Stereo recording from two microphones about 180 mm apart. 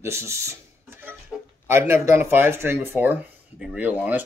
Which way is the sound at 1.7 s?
15° right (ahead or behind).